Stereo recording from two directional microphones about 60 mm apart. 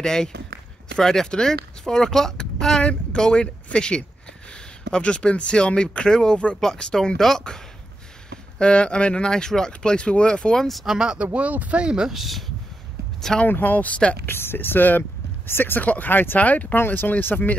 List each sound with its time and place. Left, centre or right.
0.0 s speech: centre
11.0 s speech: centre
11.3 s speech: right; by 12.4 s centre
13.5 s speech: left
14.2 s speech: left
16.7 s speech: left